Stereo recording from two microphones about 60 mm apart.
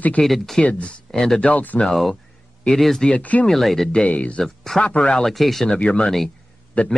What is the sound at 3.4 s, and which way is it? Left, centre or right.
Speech, centre.